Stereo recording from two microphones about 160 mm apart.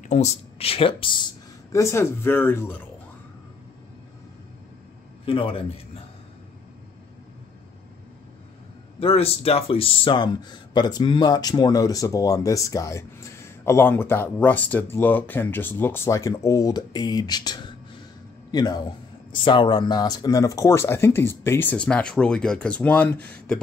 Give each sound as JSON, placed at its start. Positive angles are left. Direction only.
{"t": 0.0, "sound": "speech", "side_deg": 45}
{"t": 1.7, "sound": "speech", "side_deg": 20}
{"t": 5.2, "sound": "speech", "side_deg": 35}
{"t": 9.0, "sound": "speech", "side_deg": 35}